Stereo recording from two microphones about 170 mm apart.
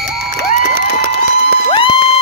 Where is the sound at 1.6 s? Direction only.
30° left (ahead or behind).